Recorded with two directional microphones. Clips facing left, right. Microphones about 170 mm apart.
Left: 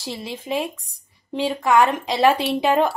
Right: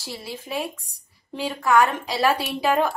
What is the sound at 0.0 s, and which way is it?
A woman's voice, 20° left (ahead or behind).